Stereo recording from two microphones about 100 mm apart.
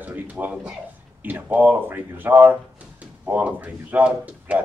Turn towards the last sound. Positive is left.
turn(degrees=-10)  # may be behind; listen again after turning